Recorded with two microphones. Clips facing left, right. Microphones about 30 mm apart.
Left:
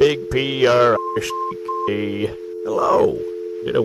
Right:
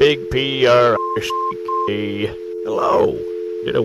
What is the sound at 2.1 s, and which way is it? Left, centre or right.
Speech, centre.